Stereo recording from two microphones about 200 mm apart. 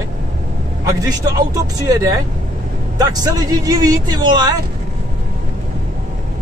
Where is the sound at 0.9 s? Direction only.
20° right (ahead or behind).